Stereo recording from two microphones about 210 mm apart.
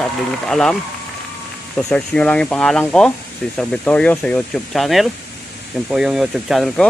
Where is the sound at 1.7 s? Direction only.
5° left (ahead or behind).